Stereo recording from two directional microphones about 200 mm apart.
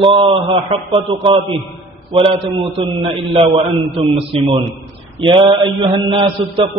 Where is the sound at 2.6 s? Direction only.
30° right (ahead or behind).